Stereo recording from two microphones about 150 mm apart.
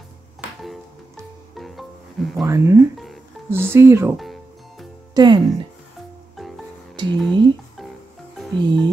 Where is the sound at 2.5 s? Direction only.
20° right (ahead or behind).